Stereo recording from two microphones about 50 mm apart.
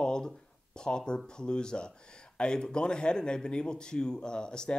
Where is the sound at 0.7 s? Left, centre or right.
Centre.